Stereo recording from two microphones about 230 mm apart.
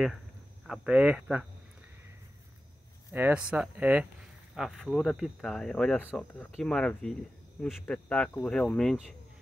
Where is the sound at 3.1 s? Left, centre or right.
Centre.